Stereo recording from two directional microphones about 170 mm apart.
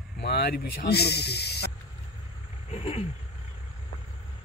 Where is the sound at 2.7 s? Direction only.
40° left (ahead or behind).